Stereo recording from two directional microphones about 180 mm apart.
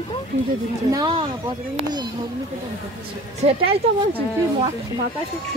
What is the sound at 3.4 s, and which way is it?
Speech, 35° right (ahead or behind).